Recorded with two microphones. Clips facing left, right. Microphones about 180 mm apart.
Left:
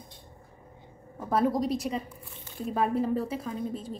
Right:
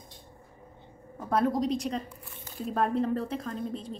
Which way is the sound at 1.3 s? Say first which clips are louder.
Even; centre (ahead or behind).